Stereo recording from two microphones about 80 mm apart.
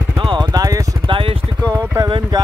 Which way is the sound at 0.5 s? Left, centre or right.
Right.